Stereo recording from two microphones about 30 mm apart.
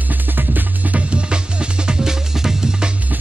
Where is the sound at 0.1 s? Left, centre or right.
Right.